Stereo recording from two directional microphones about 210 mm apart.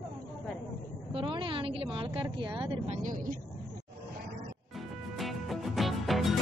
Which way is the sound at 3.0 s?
40° right (ahead or behind).